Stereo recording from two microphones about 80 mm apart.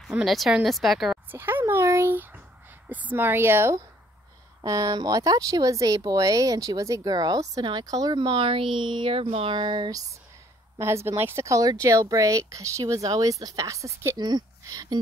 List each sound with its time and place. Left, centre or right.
0.2 s a woman's voice: centre
1.3 s speech: right
2.9 s speech: right
4.6 s speech: right
8.2 s speech: right
9.8 s speech: right
10.8 s speech: right
14.1 s speech: right
14.6 s speech: right